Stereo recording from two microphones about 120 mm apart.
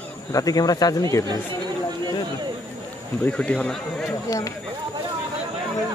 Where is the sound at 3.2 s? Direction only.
10° left (ahead or behind).